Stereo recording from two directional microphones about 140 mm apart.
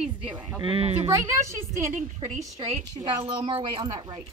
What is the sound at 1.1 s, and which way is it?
Speech, 20° right (ahead or behind).